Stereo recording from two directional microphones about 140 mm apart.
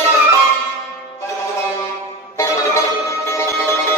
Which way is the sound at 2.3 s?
20° left (ahead or behind).